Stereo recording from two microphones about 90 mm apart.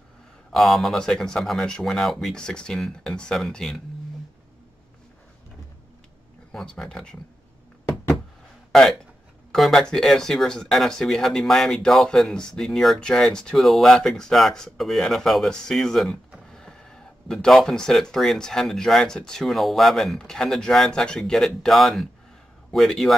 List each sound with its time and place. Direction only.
0.5 s speech: centre (ahead or behind)
6.5 s speech: 5° left (ahead or behind)
8.7 s speech: 5° left (ahead or behind)